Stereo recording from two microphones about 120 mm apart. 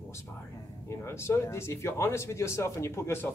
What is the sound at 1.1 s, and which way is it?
Speech, 20° left (ahead or behind).